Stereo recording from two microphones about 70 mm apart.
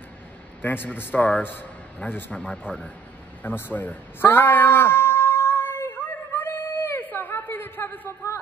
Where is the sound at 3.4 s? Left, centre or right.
Left.